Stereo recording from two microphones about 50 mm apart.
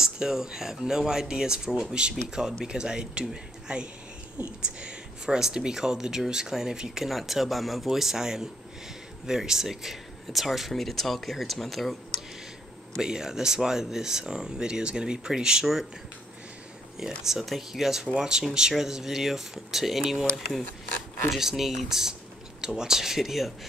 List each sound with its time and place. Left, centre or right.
0.0 s speech: centre
13.0 s speech: centre
17.2 s speech: centre
21.3 s speech: centre